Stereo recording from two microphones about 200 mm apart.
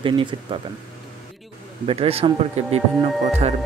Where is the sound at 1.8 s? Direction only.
30° right (ahead or behind).